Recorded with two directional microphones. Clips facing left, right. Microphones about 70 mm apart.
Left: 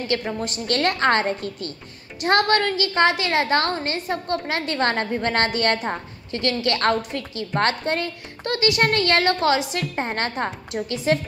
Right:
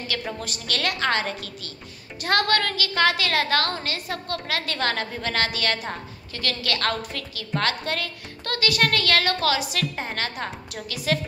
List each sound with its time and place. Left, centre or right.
0.0 s a woman's voice: left